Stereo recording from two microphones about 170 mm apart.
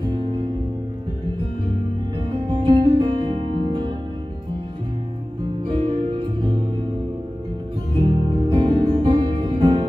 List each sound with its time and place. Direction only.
2.5 s music: 30° right (ahead or behind)
5.7 s music: 35° right (ahead or behind)
8.0 s music: 35° right (ahead or behind)